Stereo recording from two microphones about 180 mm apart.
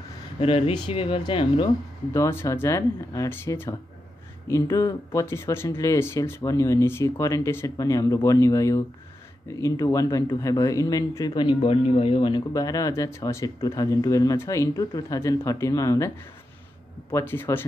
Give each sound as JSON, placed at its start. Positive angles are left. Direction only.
{"t": 0.4, "sound": "speech", "side_deg": 30}
{"t": 2.1, "sound": "speech", "side_deg": 15}
{"t": 17.1, "sound": "speech", "side_deg": 10}